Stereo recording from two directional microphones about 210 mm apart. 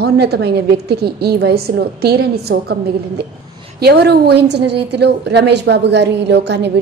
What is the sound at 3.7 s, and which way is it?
A woman's voice, 50° right (ahead or behind).